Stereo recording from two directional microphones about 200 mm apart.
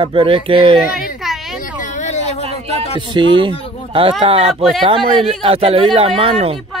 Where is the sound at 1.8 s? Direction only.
35° left (ahead or behind).